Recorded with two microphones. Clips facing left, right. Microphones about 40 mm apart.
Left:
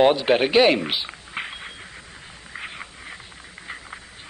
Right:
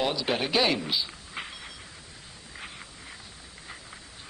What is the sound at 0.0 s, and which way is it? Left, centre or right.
Speech, left.